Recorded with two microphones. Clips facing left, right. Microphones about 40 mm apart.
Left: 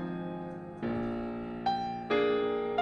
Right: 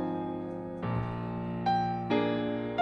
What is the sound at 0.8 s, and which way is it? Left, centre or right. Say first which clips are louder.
Music: left 5 dB; centre.